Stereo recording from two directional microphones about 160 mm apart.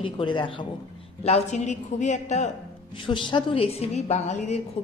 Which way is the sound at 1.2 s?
45° left (ahead or behind).